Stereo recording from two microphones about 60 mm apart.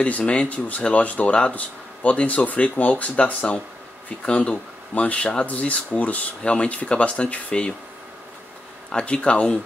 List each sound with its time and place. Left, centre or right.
0.2 s speech: centre
8.9 s speech: centre